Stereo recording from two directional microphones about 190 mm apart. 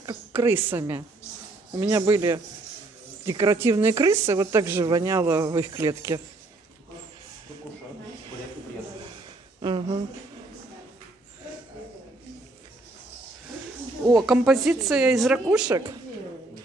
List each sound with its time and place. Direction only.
0.0 s speech: 15° right (ahead or behind)
9.6 s a sound: 25° right (ahead or behind)
14.1 s speech: centre (ahead or behind)